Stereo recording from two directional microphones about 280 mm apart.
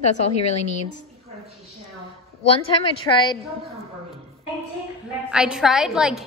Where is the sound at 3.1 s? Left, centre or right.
Centre.